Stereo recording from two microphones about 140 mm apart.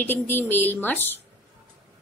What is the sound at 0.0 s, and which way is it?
A woman's voice, 15° left (ahead or behind).